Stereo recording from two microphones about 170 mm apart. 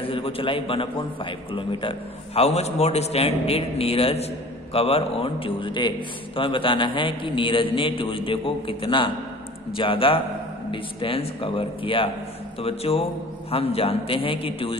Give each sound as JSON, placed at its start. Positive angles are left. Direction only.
{"t": 0.0, "sound": "a man's voice", "side_deg": 30}